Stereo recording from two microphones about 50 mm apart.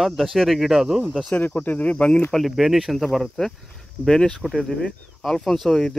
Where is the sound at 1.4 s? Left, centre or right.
Left.